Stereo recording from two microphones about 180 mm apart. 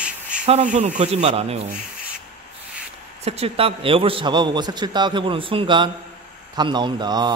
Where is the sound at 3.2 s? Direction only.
35° right (ahead or behind).